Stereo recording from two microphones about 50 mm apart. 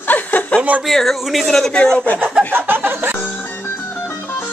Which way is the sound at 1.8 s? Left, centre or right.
Centre.